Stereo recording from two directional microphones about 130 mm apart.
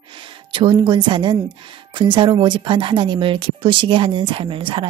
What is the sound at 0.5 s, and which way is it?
Speech, 40° right (ahead or behind).